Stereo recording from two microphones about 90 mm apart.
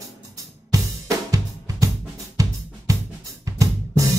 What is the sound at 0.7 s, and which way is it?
Drum kit, 40° right (ahead or behind).